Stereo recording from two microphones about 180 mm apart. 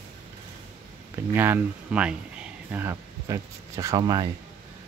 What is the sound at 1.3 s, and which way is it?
Speech, 10° right (ahead or behind).